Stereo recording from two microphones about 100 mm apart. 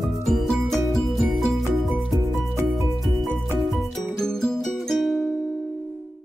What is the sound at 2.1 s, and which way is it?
Music, 30° right (ahead or behind).